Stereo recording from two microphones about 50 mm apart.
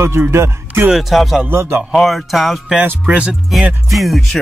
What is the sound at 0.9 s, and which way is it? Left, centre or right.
Speech, centre.